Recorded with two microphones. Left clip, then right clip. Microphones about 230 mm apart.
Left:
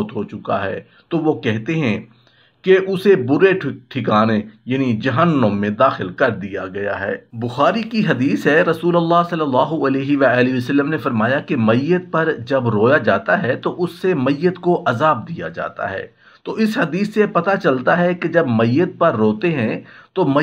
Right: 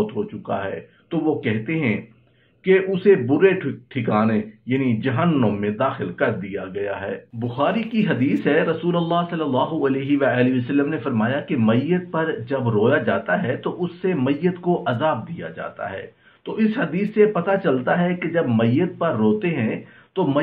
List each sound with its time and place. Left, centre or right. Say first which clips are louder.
0.0 s speech: even; left